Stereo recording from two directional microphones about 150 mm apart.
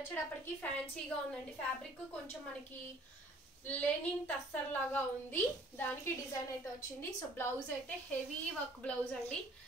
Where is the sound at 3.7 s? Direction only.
10° left (ahead or behind).